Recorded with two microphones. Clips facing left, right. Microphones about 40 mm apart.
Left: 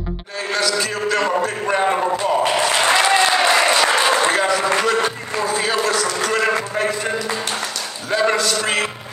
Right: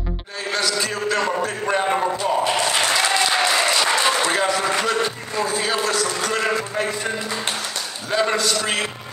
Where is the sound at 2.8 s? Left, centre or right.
Left.